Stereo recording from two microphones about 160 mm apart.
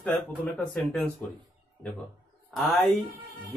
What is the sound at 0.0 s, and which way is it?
Speech, 10° left (ahead or behind).